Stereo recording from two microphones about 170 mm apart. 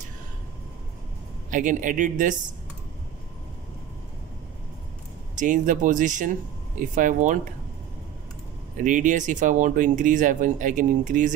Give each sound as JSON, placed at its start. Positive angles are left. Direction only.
{"t": 1.5, "sound": "speech", "side_deg": -50}
{"t": 5.4, "sound": "speech", "side_deg": -50}
{"t": 8.7, "sound": "speech", "side_deg": -50}